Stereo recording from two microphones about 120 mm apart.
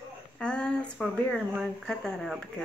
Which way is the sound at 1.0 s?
5° right (ahead or behind).